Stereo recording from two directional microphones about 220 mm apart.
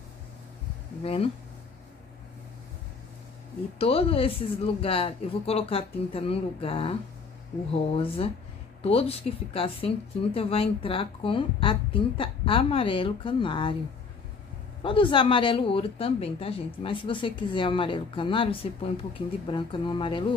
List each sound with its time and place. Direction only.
1.0 s speech: 25° left (ahead or behind)
3.7 s speech: 25° left (ahead or behind)
14.8 s speech: 25° left (ahead or behind)